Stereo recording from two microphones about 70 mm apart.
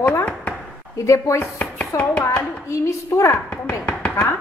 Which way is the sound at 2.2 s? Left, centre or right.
Left.